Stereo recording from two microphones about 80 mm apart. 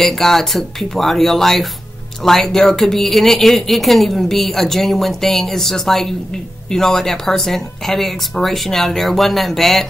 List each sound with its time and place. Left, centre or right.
0.0 s speech: centre